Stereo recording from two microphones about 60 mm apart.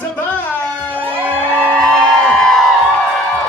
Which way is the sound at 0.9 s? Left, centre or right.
Right.